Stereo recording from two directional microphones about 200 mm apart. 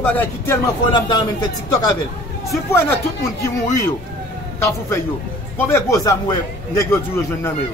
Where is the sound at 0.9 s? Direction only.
20° left (ahead or behind).